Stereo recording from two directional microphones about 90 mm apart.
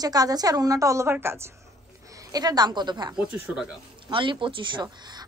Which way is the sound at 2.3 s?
45° right (ahead or behind).